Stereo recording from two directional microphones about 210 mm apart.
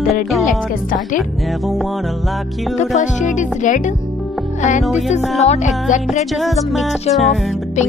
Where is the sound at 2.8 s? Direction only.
35° left (ahead or behind).